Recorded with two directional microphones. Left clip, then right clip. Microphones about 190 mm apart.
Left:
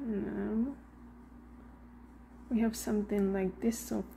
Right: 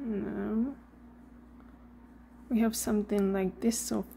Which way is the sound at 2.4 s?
20° right (ahead or behind).